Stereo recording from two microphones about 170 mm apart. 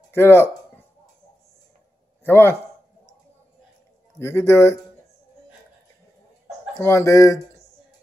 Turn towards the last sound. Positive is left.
turn(degrees=20)  # may be behind; listen again after turning